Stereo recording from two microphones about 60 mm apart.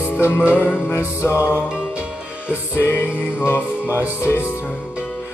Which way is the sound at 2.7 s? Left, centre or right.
Left.